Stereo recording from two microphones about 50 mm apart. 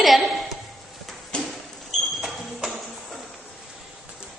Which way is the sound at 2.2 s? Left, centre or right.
Centre.